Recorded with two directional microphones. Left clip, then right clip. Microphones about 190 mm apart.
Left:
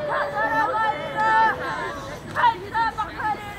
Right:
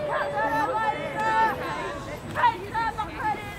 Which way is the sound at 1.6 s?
5° left (ahead or behind).